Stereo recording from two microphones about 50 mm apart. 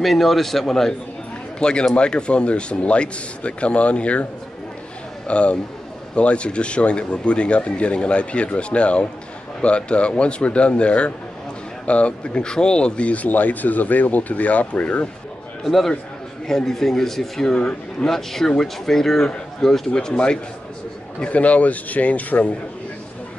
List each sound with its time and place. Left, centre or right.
0.0 s a man's voice: centre
1.6 s speech: centre
5.3 s speech: left
15.6 s a man's voice: centre
21.2 s speech: left